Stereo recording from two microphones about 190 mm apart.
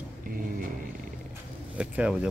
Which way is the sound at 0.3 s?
50° right (ahead or behind).